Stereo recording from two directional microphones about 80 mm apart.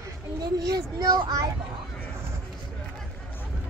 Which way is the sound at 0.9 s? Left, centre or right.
Right.